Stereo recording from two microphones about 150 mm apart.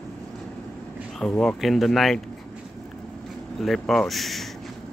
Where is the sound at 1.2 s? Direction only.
5° left (ahead or behind).